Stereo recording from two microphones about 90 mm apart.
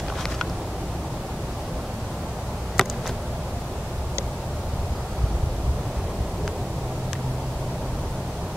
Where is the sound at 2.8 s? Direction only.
5° left (ahead or behind).